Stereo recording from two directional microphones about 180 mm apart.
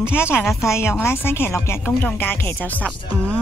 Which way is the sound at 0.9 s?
10° left (ahead or behind).